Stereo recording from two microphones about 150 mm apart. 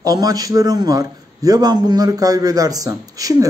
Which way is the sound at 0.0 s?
25° right (ahead or behind).